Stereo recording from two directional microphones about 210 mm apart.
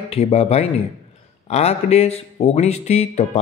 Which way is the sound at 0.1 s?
30° left (ahead or behind).